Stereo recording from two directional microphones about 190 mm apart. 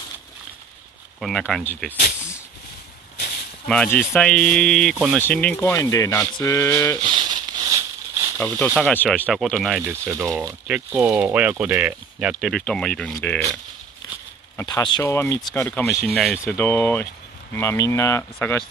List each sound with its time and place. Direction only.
1.2 s speech: centre (ahead or behind)
3.6 s speech: 5° left (ahead or behind)
5.2 s speech: 5° left (ahead or behind)
7.1 s a sound: 25° right (ahead or behind)
8.4 s speech: 10° left (ahead or behind)
10.0 s speech: 15° right (ahead or behind); by 13.4 s 5° left (ahead or behind)
14.6 s speech: 20° left (ahead or behind)